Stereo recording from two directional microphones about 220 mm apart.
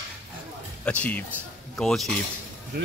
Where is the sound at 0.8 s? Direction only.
5° left (ahead or behind).